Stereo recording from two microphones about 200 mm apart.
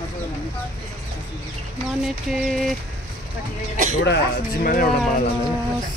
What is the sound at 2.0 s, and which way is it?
Speech, centre (ahead or behind).